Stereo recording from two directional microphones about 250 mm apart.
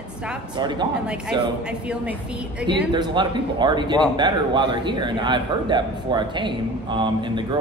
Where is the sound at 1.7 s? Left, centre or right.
Centre.